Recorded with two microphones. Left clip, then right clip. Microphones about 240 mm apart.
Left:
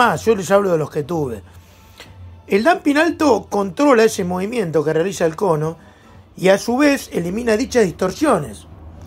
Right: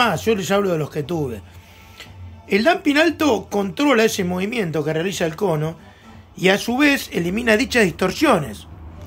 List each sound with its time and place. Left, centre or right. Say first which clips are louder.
0.0 s speech: left 3 dB; centre
2.5 s speech: left 2 dB; centre